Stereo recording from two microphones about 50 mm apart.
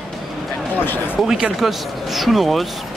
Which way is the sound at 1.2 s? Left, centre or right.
Centre.